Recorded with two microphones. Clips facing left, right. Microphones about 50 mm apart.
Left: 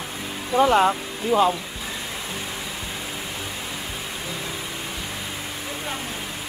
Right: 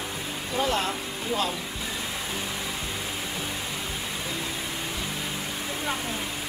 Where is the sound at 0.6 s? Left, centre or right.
Left.